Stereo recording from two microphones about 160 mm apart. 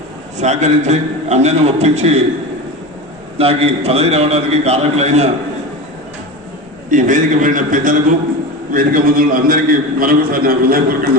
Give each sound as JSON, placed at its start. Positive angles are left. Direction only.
{"t": 0.4, "sound": "a man's voice", "side_deg": -45}
{"t": 3.3, "sound": "a man's voice", "side_deg": -40}
{"t": 6.9, "sound": "a man's voice", "side_deg": -55}